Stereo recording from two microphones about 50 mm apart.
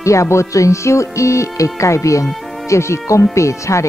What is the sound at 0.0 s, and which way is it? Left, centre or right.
Speech, left.